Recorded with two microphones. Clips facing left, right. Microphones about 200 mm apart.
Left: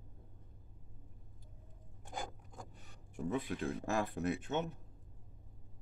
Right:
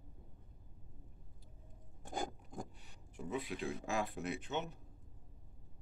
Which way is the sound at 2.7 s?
50° left (ahead or behind).